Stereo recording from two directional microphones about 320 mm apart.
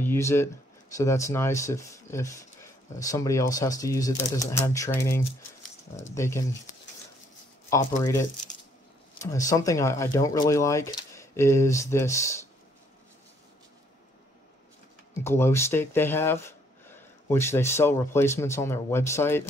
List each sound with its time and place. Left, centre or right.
0.0 s speech: centre
7.7 s speech: centre
15.2 s speech: centre